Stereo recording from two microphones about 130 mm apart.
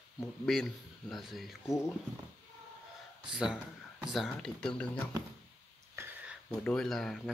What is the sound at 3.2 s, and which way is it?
A man's voice, 5° right (ahead or behind).